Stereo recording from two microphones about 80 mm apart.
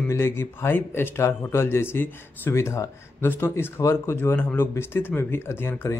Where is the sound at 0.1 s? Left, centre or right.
Left.